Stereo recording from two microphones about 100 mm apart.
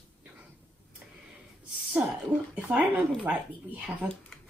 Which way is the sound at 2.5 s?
15° right (ahead or behind).